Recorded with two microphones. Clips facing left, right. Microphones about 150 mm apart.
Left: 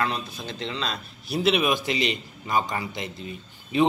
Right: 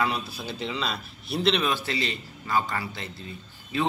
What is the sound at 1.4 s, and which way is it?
A man's voice, 10° left (ahead or behind).